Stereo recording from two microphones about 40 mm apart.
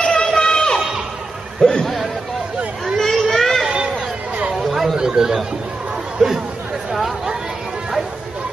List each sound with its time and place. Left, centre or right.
0.0 s a sound: left; by 3.6 s centre
4.6 s chatter: centre
4.9 s chatter: centre
6.1 s speech: centre